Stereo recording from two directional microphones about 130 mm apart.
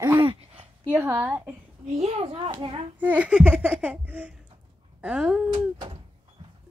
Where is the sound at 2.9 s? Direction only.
10° right (ahead or behind).